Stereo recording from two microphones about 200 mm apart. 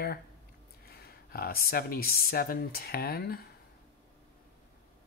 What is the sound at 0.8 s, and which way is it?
Speech, 50° left (ahead or behind).